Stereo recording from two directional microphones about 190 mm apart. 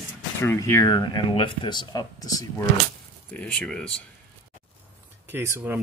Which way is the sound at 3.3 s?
5° left (ahead or behind).